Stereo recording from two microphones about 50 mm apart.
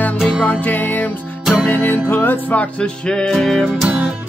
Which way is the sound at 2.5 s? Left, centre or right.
Left.